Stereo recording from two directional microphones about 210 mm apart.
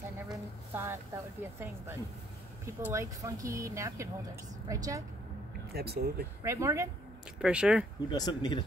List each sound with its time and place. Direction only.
0.3 s speech: 10° right (ahead or behind)
5.7 s speech: 50° right (ahead or behind)
6.4 s speech: 15° right (ahead or behind)
8.1 s speech: 20° left (ahead or behind)